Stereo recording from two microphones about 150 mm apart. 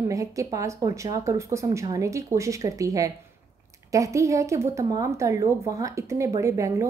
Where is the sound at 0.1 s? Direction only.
20° right (ahead or behind).